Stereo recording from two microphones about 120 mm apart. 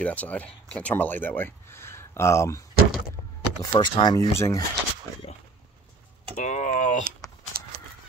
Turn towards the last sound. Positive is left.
turn(degrees=90)